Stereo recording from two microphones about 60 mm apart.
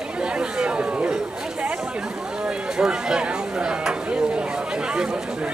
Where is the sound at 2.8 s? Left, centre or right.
Centre.